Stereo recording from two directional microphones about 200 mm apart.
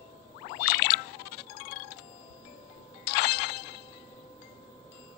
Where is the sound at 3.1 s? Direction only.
50° left (ahead or behind).